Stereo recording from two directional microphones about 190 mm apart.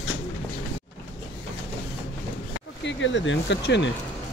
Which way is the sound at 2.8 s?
75° left (ahead or behind).